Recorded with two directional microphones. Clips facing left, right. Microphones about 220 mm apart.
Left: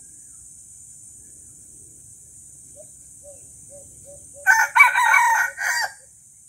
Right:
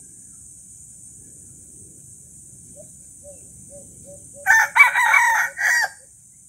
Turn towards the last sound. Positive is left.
turn(degrees=-10)  # may be behind; listen again after turning